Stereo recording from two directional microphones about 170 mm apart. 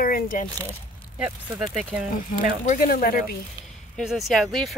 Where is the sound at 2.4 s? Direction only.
45° left (ahead or behind).